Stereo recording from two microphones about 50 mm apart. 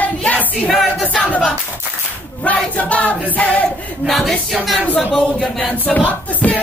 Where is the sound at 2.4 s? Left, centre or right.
Left.